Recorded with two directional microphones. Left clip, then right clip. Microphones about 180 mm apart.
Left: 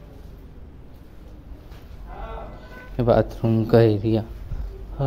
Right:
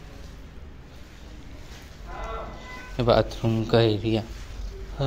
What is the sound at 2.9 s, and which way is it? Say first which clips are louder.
Speech: left 2 dB; 30° left (ahead or behind).